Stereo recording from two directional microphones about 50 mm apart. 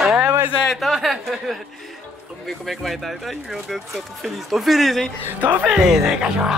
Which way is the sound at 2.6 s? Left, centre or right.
Centre.